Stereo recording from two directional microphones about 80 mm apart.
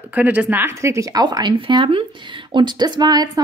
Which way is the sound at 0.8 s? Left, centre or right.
Right.